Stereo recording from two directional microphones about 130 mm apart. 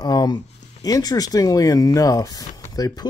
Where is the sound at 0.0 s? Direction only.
30° left (ahead or behind).